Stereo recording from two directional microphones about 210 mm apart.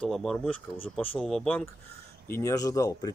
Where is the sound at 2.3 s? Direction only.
15° left (ahead or behind).